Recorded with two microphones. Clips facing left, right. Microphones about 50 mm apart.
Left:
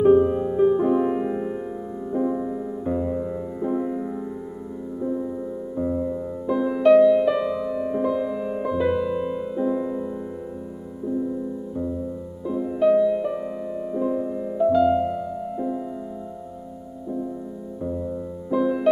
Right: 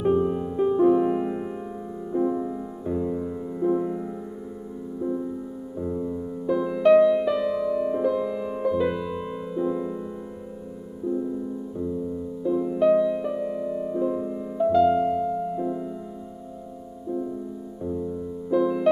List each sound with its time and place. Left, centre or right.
0.0 s music: centre
5.8 s music: left
6.4 s music: centre
6.9 s music: centre
12.4 s music: centre
17.8 s music: centre